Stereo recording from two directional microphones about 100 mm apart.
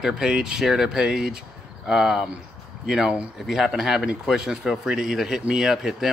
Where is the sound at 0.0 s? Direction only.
5° right (ahead or behind).